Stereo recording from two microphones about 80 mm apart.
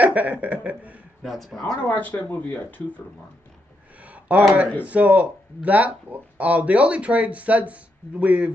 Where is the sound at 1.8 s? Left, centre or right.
Left.